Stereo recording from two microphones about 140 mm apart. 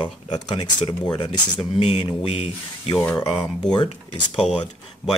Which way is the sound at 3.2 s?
25° left (ahead or behind).